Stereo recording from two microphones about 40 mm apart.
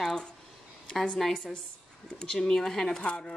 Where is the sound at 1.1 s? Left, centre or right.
Centre.